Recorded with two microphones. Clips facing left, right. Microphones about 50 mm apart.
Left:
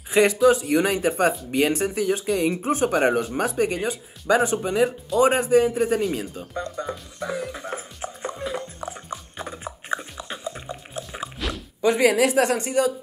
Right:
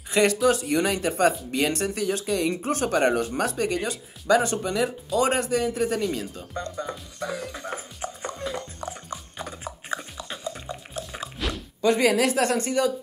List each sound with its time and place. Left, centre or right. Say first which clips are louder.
0.1 s a woman's voice: left 3 dB; centre
6.5 s music: left 2 dB; centre
11.8 s a woman's voice: left 2 dB; left